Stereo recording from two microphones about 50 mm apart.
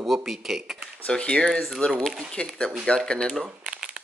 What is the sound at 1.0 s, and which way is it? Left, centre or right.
Speech, centre.